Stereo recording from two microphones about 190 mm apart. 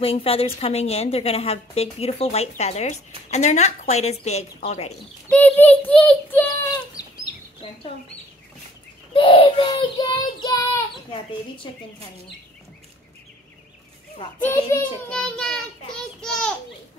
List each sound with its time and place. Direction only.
0.0 s a woman's voice: 30° left (ahead or behind)
5.3 s a child's voice: 10° left (ahead or behind)
7.0 s chicken: 20° left (ahead or behind)
7.6 s child singing: 30° left (ahead or behind)
9.1 s child singing: 25° left (ahead or behind)
14.4 s child singing: 10° left (ahead or behind)